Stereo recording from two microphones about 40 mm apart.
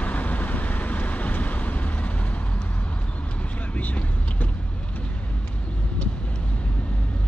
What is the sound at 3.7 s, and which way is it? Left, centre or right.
Vehicle, left.